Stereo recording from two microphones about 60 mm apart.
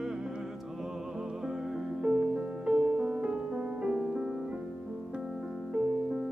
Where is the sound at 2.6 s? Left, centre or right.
Right.